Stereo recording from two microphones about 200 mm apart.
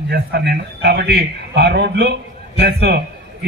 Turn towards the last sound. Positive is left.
turn(degrees=-55)  # may be behind; listen again after turning